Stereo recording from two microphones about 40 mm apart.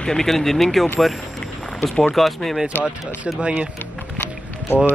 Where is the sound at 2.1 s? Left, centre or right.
Centre.